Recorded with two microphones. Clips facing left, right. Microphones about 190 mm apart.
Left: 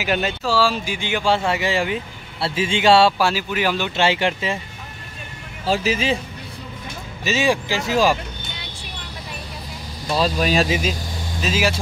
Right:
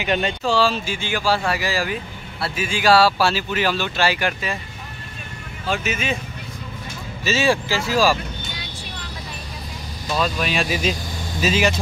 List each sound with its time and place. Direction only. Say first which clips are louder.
0.0 s speech: even; 5° left (ahead or behind); by 4.6 s 25° left (ahead or behind)
5.7 s speech: left 4 dB; 30° left (ahead or behind)
7.2 s speech: even; 15° left (ahead or behind)
10.1 s speech: left 4 dB; 35° left (ahead or behind)
11.4 s speech: right 2 dB; 5° left (ahead or behind)